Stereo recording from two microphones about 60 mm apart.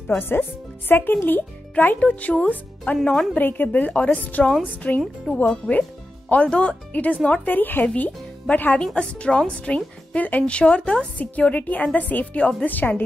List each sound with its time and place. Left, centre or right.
0.2 s a child's voice: left
5.0 s speech: centre
5.7 s speech: left
8.7 s a woman's voice: centre; by 13.0 s left